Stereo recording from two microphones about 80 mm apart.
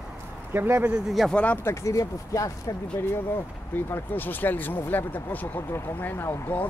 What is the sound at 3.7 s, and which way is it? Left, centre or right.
Speech, left.